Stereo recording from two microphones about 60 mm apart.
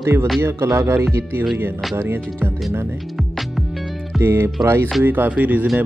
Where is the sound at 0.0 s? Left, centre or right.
Right.